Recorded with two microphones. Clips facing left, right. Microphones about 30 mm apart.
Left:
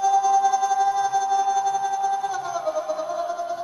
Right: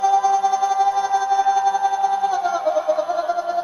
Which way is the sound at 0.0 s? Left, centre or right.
Right.